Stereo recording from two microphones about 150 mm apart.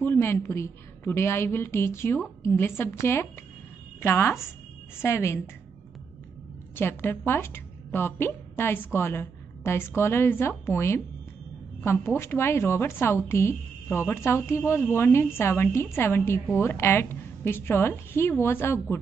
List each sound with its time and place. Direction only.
0.0 s a woman's voice: 15° left (ahead or behind)
6.8 s a woman's voice: 15° left (ahead or behind)